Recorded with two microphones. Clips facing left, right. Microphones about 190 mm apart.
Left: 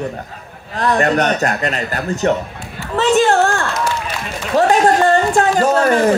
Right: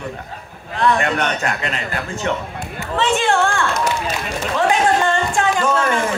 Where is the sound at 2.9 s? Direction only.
40° left (ahead or behind).